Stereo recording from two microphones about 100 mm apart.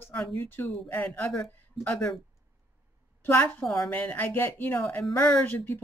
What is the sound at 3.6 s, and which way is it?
Speech, 5° left (ahead or behind).